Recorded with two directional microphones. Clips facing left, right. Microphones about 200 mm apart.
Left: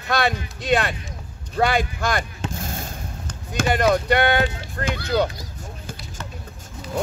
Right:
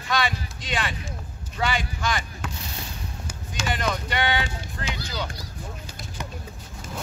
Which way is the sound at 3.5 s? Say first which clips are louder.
Left 9 dB; 55° left (ahead or behind).